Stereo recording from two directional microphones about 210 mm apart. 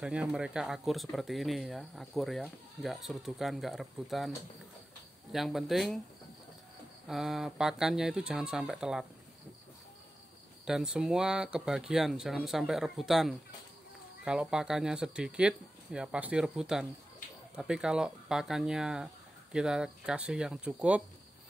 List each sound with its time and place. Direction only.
0.0 s speech: 5° right (ahead or behind)
5.3 s speech: centre (ahead or behind)
7.1 s speech: centre (ahead or behind)
10.6 s speech: 5° right (ahead or behind)